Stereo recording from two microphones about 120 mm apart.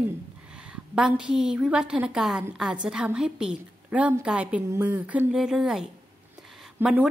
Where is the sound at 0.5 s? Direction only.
10° right (ahead or behind).